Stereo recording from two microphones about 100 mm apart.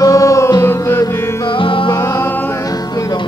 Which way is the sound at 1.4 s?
60° left (ahead or behind).